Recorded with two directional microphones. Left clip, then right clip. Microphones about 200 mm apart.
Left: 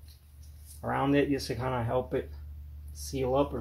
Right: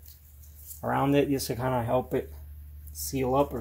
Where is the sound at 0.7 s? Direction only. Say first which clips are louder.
Right 2 dB; 35° right (ahead or behind).